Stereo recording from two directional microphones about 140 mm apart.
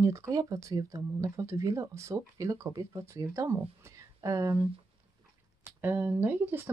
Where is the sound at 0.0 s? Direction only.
20° right (ahead or behind).